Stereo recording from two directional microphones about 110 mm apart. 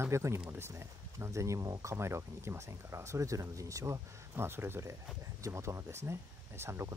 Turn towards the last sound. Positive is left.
turn(degrees=-25)  # may be behind; listen again after turning